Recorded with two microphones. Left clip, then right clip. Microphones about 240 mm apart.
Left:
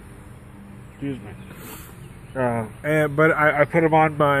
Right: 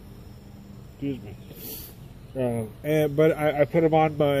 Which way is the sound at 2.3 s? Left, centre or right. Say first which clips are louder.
Left 4 dB; left.